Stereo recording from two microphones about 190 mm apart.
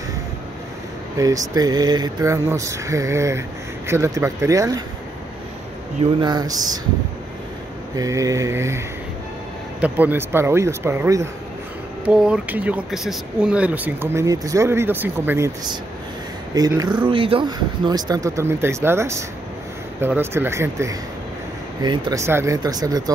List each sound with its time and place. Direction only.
1.1 s speech: 15° right (ahead or behind)
6.2 s speech: 20° right (ahead or behind)
7.9 s speech: 15° right (ahead or behind)